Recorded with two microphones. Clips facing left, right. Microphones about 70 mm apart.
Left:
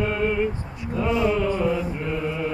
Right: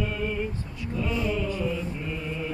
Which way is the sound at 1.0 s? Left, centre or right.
Left.